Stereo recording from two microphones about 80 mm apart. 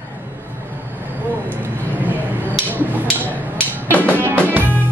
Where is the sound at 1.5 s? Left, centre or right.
Right.